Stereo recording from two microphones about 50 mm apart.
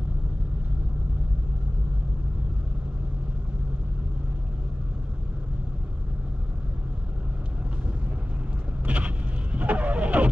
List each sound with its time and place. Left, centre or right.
8.8 s vehicle: right